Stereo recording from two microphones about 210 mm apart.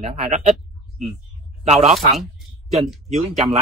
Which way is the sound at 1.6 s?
30° right (ahead or behind).